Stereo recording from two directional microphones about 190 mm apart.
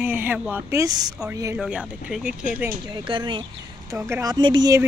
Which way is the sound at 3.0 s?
25° right (ahead or behind).